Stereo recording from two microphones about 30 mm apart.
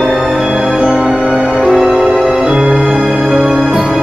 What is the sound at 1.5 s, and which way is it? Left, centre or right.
Music, centre.